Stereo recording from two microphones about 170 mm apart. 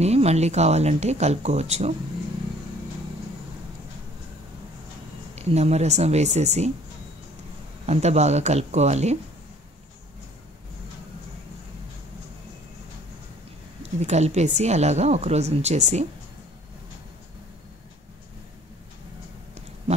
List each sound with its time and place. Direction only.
0.0 s a woman's voice: 40° right (ahead or behind)
5.3 s a woman's voice: 40° right (ahead or behind)
7.8 s a woman's voice: 40° right (ahead or behind)
13.9 s a woman's voice: 40° right (ahead or behind)